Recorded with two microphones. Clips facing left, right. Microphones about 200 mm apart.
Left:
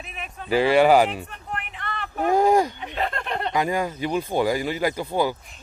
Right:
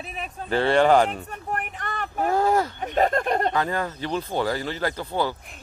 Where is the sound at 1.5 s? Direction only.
45° right (ahead or behind).